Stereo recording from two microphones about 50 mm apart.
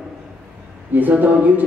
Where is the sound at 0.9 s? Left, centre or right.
Right.